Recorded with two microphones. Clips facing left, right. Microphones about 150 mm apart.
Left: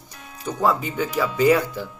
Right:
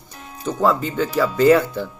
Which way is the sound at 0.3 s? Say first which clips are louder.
Right 4 dB; 30° right (ahead or behind).